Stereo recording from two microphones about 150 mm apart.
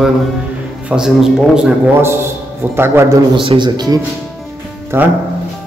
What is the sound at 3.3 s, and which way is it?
Speech, 35° right (ahead or behind).